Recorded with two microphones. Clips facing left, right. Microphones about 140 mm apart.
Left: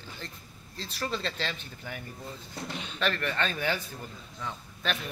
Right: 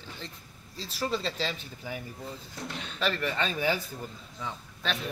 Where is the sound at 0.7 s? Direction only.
10° right (ahead or behind).